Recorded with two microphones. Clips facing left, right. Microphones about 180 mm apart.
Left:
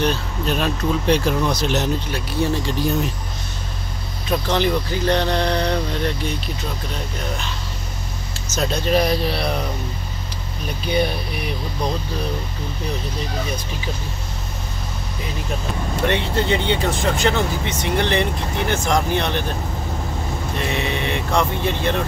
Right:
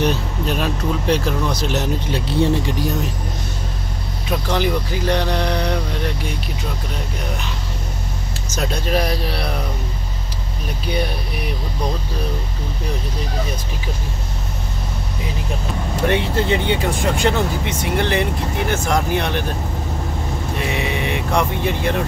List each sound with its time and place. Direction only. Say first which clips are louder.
0.0 s speech: right 1 dB; 10° right (ahead or behind)
2.0 s speech: right 4 dB; 25° right (ahead or behind)
4.3 s speech: left 1 dB; 10° right (ahead or behind)
8.5 s speech: left 2 dB; 5° right (ahead or behind)
16.1 s speech: right 2 dB; 5° right (ahead or behind)
20.5 s speech: right 1 dB; 10° right (ahead or behind)